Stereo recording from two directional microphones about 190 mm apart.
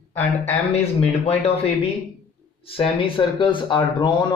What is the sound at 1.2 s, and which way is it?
Speech, 30° left (ahead or behind).